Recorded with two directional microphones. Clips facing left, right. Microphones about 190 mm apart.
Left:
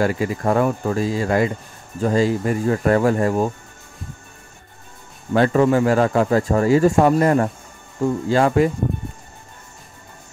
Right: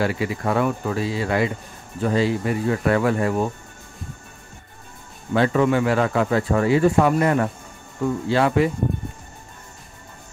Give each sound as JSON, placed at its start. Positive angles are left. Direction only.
{"t": 0.0, "sound": "speech", "side_deg": 45}
{"t": 5.3, "sound": "speech", "side_deg": 40}